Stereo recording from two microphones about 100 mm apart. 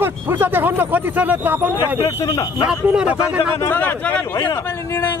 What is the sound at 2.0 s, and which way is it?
Speech, 40° left (ahead or behind).